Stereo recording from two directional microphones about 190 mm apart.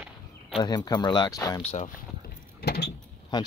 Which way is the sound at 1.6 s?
35° left (ahead or behind).